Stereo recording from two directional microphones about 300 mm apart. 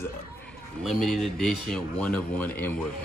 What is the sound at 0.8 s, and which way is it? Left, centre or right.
Speech, centre.